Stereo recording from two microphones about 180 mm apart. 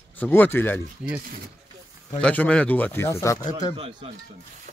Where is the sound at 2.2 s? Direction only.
5° left (ahead or behind).